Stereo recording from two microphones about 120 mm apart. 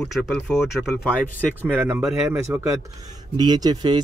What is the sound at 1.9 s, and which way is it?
Speech, 20° right (ahead or behind).